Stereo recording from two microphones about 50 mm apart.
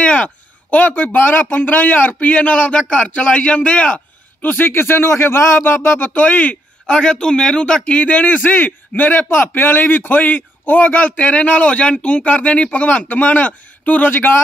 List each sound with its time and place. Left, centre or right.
0.0 s speech: left
4.4 s a man's voice: left
6.9 s a man's voice: centre; by 14.4 s left